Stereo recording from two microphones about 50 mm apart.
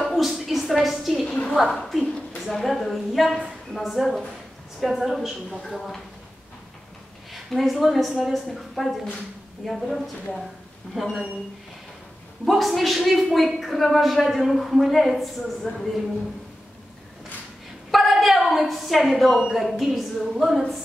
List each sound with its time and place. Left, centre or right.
0.0 s a sound: centre
1.2 s a woman's voice: centre
1.5 s a woman's voice: centre
7.3 s a woman's voice: centre
12.4 s a woman's voice: centre
17.9 s a woman's voice: centre